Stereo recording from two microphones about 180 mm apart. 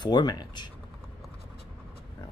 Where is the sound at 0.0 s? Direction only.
20° left (ahead or behind).